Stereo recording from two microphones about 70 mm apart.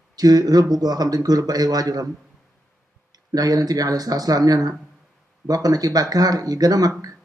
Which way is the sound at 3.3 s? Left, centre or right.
Right.